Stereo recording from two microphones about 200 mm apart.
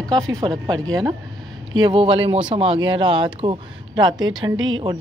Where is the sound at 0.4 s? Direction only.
20° right (ahead or behind).